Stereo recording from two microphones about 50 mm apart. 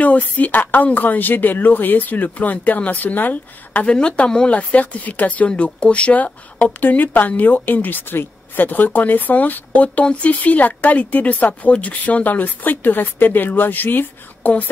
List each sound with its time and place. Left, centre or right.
0.0 s speech: left
3.8 s speech: left